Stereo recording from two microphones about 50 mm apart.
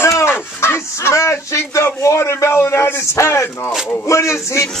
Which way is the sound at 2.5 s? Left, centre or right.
Left.